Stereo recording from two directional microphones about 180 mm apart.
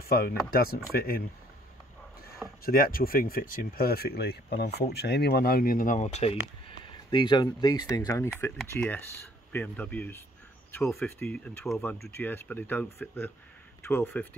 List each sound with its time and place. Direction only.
0.0 s speech: 55° left (ahead or behind)
2.6 s speech: 55° left (ahead or behind)
7.1 s speech: 25° left (ahead or behind)